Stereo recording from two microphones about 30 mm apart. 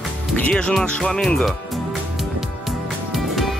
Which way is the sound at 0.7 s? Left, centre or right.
Left.